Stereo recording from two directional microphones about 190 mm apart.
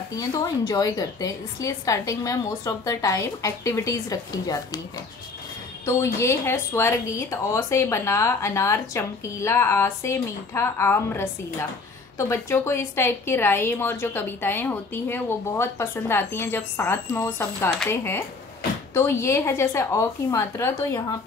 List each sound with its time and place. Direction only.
0.1 s a woman's voice: 20° left (ahead or behind)
5.9 s a woman's voice: 15° left (ahead or behind)